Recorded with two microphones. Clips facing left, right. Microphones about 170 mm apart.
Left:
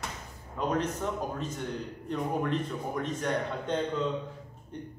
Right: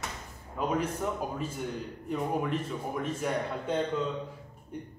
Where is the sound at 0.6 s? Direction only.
10° right (ahead or behind).